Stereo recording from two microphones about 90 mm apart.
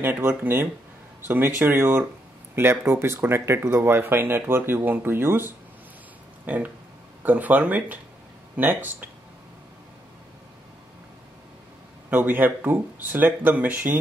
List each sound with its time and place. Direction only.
0.0 s speech: 25° right (ahead or behind)
12.1 s speech: 20° right (ahead or behind)